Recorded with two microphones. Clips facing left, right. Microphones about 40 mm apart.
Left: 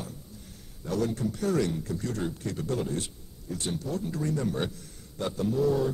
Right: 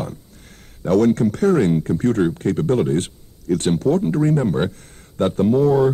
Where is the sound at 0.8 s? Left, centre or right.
Right.